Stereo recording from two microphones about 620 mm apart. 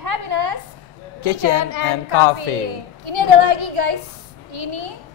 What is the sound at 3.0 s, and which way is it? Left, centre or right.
Speech, right.